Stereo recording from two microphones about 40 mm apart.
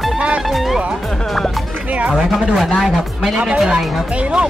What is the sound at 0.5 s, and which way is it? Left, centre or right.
Speech, centre.